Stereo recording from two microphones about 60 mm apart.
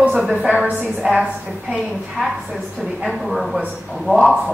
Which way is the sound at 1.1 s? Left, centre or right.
Centre.